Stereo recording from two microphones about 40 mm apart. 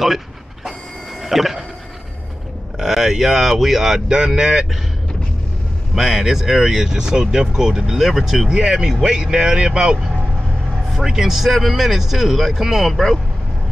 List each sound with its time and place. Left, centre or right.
1.2 s a sound: centre
2.8 s speech: centre
5.9 s speech: centre